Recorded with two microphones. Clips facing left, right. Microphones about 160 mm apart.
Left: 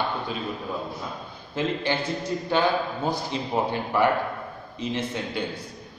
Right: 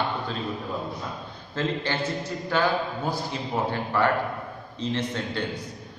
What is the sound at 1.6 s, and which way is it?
A man's voice, 15° left (ahead or behind).